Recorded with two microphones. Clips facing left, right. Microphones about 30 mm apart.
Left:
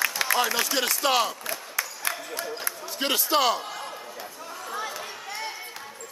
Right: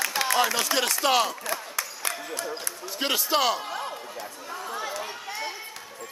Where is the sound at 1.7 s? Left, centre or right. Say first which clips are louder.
Left 1 dB; centre.